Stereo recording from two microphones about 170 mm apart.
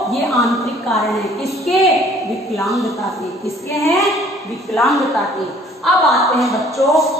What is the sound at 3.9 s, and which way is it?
A woman's voice, centre (ahead or behind).